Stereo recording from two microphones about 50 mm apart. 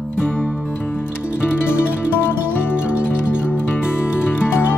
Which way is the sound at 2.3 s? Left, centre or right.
Left.